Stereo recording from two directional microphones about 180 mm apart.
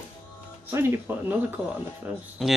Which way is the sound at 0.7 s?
15° right (ahead or behind).